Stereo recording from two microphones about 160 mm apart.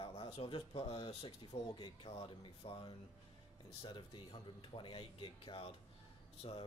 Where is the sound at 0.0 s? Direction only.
35° left (ahead or behind).